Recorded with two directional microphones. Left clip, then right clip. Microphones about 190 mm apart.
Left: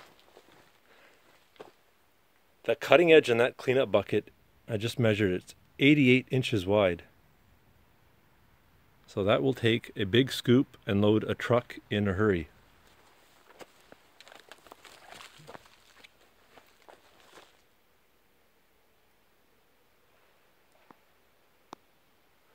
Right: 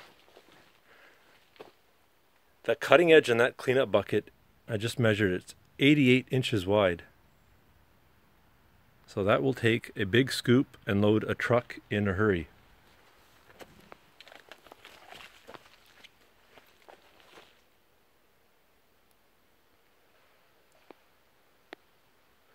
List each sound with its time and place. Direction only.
2.6 s speech: centre (ahead or behind)
9.0 s speech: 5° left (ahead or behind)
13.5 s a sound: 15° left (ahead or behind)
16.5 s walk: 5° left (ahead or behind)